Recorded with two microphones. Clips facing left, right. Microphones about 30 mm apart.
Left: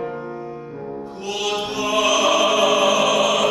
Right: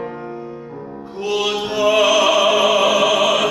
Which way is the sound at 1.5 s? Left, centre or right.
Centre.